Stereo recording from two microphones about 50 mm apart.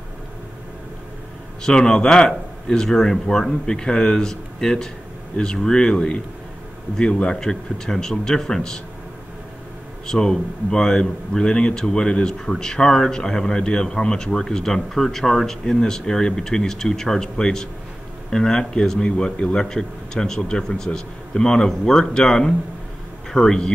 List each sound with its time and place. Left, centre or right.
1.6 s a man's voice: centre
7.3 s speech: centre
10.0 s speech: centre